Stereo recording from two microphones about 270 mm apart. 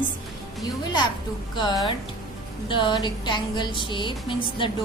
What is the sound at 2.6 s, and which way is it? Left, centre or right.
A woman's voice, centre.